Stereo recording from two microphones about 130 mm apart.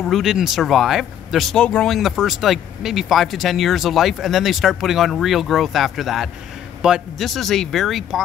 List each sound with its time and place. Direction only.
0.0 s speech: centre (ahead or behind)